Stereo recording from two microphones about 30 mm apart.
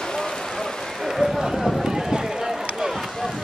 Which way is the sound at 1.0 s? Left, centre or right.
Centre.